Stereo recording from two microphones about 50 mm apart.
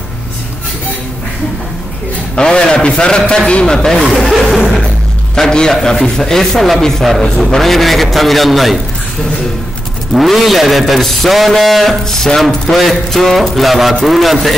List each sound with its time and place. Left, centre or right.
2.3 s a man's voice: centre
4.1 s a man's voice: centre
4.5 s a man's voice: centre
10.1 s a man's voice: centre